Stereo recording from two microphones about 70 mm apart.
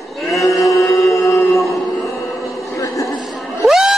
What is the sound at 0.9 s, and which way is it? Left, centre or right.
Music, left.